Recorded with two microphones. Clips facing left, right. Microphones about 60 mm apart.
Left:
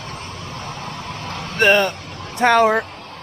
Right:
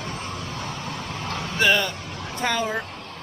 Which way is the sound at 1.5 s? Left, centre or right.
Left.